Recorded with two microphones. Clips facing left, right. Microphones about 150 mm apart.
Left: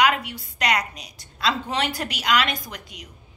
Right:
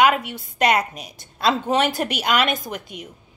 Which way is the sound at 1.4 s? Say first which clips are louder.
Right 5 dB; 50° right (ahead or behind).